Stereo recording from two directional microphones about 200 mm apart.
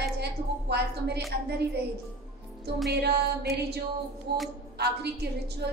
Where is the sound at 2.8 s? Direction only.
55° right (ahead or behind).